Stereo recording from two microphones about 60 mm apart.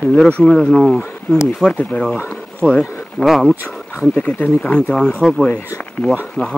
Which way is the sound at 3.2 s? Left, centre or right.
Centre.